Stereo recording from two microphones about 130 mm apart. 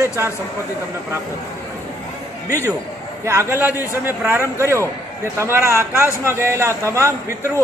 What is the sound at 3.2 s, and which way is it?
A man's voice, 20° right (ahead or behind).